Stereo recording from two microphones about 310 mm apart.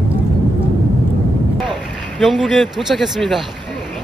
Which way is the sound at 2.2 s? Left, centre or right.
Centre.